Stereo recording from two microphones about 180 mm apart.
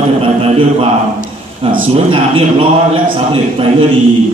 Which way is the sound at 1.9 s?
30° right (ahead or behind).